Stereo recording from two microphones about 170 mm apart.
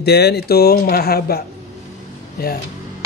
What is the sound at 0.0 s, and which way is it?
Speech, 70° left (ahead or behind).